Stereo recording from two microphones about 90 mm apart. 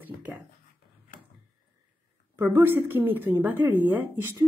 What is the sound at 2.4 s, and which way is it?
A woman's voice, 25° right (ahead or behind).